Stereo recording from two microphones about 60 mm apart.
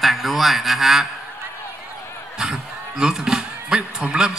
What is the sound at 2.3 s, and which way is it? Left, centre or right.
Speech, centre.